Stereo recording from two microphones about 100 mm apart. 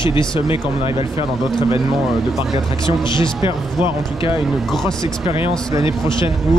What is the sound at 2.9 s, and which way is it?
Speech, 50° left (ahead or behind).